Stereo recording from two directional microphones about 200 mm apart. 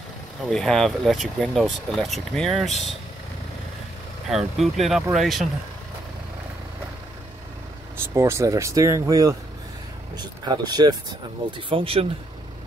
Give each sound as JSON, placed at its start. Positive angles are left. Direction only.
{"t": 0.5, "sound": "speech", "side_deg": 0}
{"t": 4.3, "sound": "speech", "side_deg": 0}
{"t": 8.1, "sound": "speech", "side_deg": -15}